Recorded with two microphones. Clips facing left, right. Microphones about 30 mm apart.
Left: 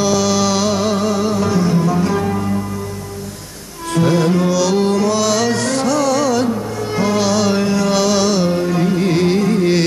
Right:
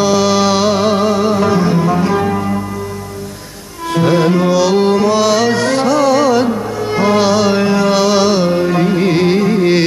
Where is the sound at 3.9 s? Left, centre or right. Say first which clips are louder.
Right 3 dB; centre.